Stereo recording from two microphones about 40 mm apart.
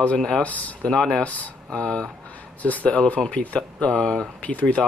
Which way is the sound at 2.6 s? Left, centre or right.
Left.